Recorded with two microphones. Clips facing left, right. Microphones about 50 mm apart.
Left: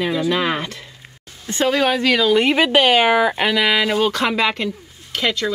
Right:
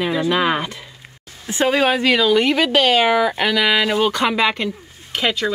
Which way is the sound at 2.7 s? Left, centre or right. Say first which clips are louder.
Left 1 dB; centre.